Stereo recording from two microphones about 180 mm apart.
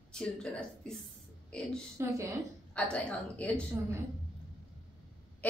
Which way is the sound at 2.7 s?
5° left (ahead or behind).